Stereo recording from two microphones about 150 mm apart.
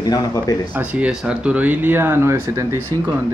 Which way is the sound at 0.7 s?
10° right (ahead or behind).